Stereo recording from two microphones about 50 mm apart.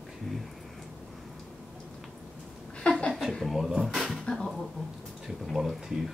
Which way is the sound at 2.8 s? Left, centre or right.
Centre.